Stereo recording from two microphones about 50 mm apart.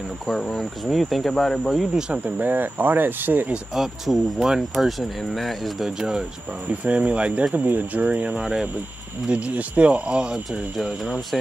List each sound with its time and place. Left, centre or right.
0.3 s speech: centre
2.2 s speech: right
3.7 s speech: centre
5.9 s speech: centre
6.7 s speech: right
8.4 s speech: centre
9.3 s speech: right